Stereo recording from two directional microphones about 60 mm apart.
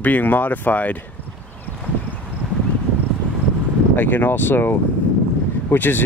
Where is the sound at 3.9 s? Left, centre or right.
Left.